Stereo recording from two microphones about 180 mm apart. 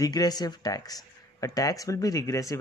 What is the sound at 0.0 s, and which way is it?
Speech, 20° left (ahead or behind).